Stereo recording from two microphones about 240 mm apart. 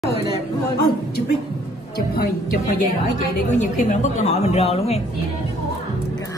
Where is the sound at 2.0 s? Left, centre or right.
Left.